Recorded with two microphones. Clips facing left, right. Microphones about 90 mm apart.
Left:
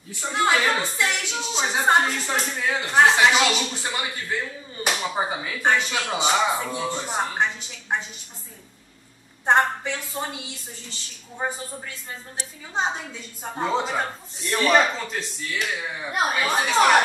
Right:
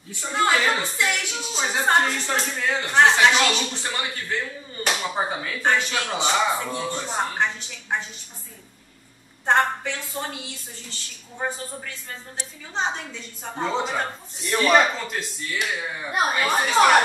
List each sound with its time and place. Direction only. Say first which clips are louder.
0.2 s speech: even; 5° left (ahead or behind)
9.5 s a woman's voice: left 1 dB; 20° left (ahead or behind); by 17.0 s centre (ahead or behind)